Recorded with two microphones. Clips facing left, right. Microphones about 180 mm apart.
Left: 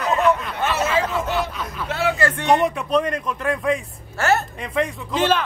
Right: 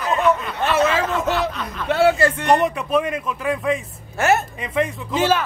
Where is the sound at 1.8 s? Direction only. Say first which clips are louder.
Right 7 dB; 10° left (ahead or behind).